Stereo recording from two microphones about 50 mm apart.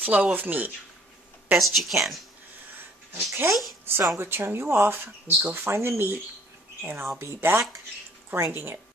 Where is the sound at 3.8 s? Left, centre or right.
Right.